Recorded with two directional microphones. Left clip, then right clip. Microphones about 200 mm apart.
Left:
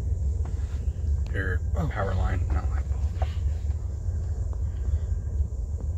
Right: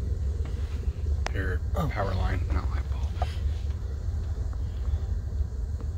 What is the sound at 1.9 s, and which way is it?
Speech, 5° right (ahead or behind).